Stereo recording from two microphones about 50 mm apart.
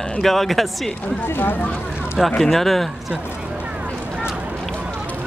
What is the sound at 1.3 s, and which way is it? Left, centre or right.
Speech, left.